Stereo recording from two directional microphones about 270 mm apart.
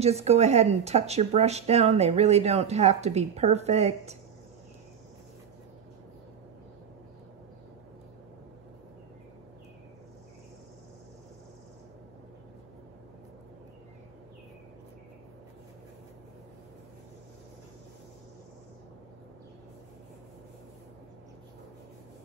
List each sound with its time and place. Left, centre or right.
0.0 s speech: right